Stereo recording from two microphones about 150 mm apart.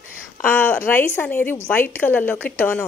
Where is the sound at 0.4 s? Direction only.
10° left (ahead or behind).